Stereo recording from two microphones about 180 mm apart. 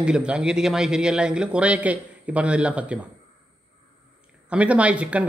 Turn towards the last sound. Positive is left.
turn(degrees=-5)  # may be behind; listen again after turning